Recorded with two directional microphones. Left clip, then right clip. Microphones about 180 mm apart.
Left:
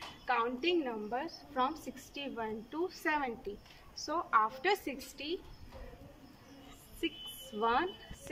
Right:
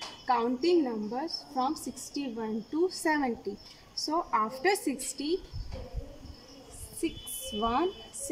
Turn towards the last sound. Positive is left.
turn(degrees=-15)  # may be behind; listen again after turning